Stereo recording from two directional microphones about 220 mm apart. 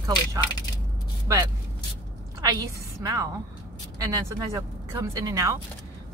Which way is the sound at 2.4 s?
15° right (ahead or behind).